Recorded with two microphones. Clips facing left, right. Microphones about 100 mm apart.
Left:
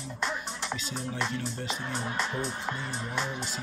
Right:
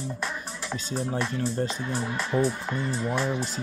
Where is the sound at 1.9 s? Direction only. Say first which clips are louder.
Right 6 dB; 30° left (ahead or behind).